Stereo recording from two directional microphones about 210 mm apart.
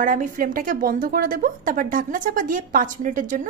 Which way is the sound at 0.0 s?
40° right (ahead or behind).